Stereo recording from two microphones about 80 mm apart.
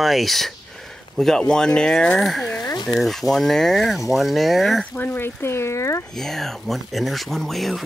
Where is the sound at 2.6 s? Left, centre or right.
Left.